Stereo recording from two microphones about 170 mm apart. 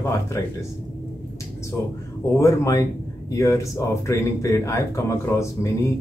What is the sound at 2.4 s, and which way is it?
Speech, 20° left (ahead or behind).